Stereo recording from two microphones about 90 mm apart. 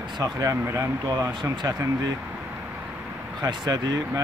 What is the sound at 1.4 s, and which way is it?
Speech, 55° right (ahead or behind).